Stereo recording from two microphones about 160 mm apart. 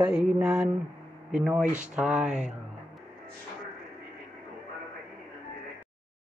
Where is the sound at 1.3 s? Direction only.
10° right (ahead or behind).